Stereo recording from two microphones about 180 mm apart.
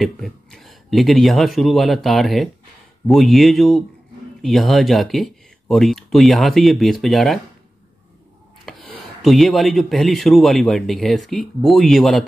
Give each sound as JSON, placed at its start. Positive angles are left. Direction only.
{"t": 0.0, "sound": "speech", "side_deg": 0}
{"t": 8.6, "sound": "speech", "side_deg": 0}